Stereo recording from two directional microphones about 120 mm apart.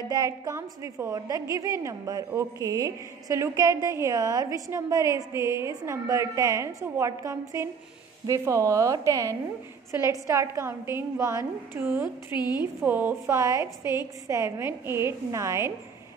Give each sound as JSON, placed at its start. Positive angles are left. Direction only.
{"t": 0.1, "sound": "a woman's voice", "side_deg": -30}
{"t": 12.4, "sound": "a woman's voice", "side_deg": 35}
{"t": 12.8, "sound": "a woman's voice", "side_deg": -15}